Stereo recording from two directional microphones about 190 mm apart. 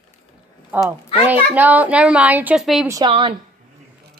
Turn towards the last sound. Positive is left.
turn(degrees=-25)  # may be behind; listen again after turning